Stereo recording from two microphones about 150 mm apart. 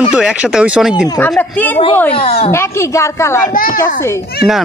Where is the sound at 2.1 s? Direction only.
45° left (ahead or behind).